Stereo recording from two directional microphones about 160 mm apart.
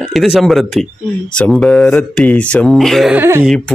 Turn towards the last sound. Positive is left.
turn(degrees=-10)  # may be behind; listen again after turning